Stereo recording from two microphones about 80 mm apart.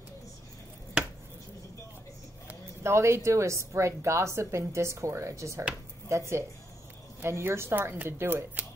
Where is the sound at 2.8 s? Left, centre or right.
Right.